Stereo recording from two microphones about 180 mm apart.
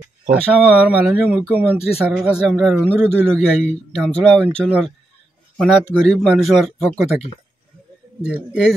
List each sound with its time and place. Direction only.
0.3 s a man's voice: 5° right (ahead or behind)